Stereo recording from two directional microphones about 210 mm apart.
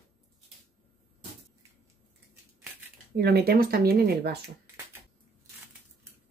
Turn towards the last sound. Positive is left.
turn(degrees=-50)  # may be behind; listen again after turning